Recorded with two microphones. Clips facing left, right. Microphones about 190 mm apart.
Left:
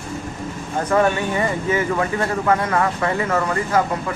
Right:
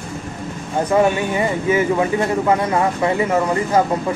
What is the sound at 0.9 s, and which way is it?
Speech, 15° right (ahead or behind).